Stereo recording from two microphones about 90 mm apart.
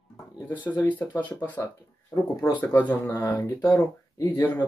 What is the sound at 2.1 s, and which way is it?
Speech, 35° left (ahead or behind).